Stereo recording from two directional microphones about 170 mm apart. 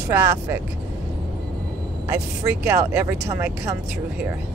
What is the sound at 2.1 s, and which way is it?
Speech, 15° right (ahead or behind).